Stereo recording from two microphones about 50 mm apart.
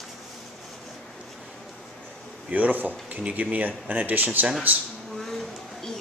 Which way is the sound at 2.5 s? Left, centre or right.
Right.